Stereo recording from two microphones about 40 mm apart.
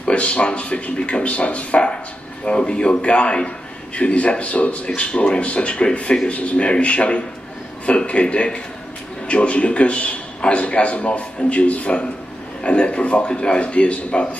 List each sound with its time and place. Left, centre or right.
0.0 s a man's voice: left